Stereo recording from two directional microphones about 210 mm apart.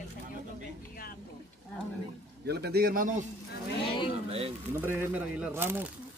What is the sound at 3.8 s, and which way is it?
Speech, 25° left (ahead or behind).